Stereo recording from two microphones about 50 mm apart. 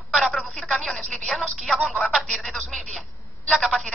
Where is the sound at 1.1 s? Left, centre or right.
Left.